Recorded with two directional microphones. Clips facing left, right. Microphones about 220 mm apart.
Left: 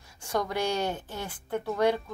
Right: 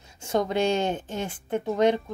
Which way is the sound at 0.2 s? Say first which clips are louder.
Right 5 dB; 25° right (ahead or behind).